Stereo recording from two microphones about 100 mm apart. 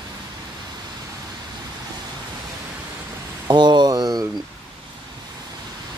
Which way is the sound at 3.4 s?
50° right (ahead or behind).